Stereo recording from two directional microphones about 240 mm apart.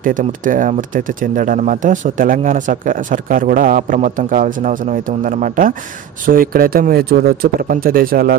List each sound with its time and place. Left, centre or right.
0.0 s speech: right